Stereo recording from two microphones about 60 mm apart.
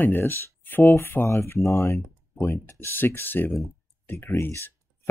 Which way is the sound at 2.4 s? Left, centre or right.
Left.